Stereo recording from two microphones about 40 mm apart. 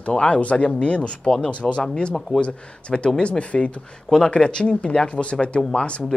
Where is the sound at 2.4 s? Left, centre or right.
Left.